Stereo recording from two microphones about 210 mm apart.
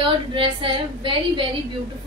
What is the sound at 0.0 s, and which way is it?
A woman's voice, 25° right (ahead or behind).